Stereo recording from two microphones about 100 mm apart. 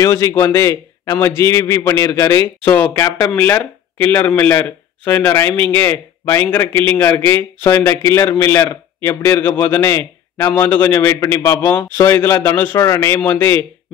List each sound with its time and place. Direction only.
0.0 s a man's voice: 30° left (ahead or behind)